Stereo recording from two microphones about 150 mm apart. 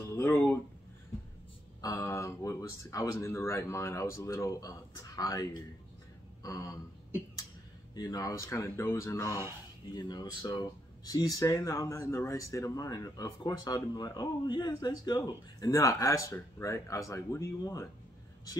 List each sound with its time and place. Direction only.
0.1 s a sound: 15° left (ahead or behind)
1.8 s speech: 20° left (ahead or behind)
7.9 s speech: 25° left (ahead or behind)